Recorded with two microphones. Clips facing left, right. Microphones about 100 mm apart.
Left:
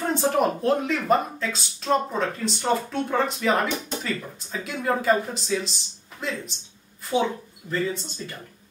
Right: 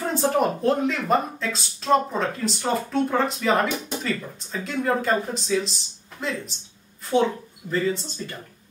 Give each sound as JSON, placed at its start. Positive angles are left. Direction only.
{"t": 0.1, "sound": "a woman's voice", "side_deg": 0}
{"t": 7.6, "sound": "speech", "side_deg": -5}